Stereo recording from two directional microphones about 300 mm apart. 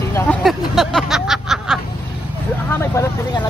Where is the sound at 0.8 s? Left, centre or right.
Centre.